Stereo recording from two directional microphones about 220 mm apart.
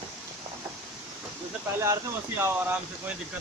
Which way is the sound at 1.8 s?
10° right (ahead or behind).